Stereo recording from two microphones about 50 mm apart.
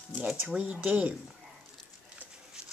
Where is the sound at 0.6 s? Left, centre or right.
Right.